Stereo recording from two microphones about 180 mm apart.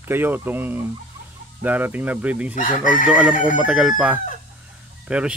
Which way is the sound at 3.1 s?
5° right (ahead or behind).